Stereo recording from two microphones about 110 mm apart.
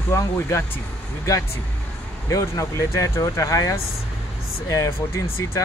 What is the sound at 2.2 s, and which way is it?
Speech, 30° left (ahead or behind).